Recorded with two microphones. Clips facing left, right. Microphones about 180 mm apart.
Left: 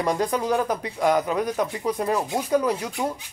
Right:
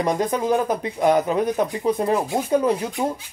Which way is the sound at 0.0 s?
20° right (ahead or behind).